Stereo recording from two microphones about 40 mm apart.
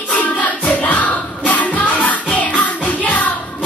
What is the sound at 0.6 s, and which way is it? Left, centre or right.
Music, left.